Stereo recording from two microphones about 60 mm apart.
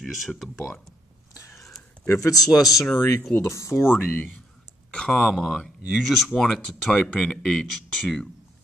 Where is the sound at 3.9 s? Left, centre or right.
Left.